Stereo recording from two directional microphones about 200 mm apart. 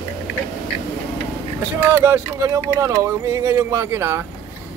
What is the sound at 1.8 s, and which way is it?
A man's voice, 15° right (ahead or behind).